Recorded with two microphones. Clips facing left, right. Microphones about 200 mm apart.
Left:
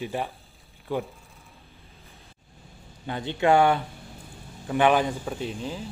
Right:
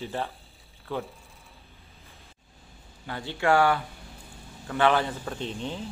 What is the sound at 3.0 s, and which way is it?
Speech, 20° left (ahead or behind).